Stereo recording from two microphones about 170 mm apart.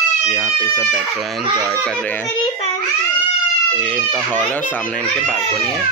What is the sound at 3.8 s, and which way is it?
Speech, 5° left (ahead or behind).